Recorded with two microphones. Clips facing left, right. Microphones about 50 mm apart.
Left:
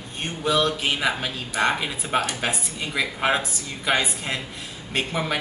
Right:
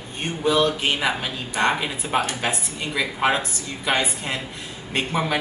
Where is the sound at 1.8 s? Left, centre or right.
Centre.